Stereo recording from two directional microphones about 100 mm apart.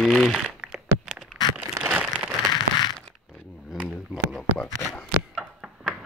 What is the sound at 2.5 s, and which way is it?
Fireworks, 45° left (ahead or behind).